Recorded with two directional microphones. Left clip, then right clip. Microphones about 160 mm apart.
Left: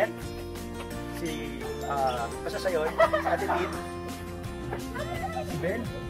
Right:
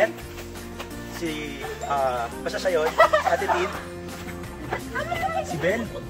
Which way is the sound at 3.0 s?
90° right.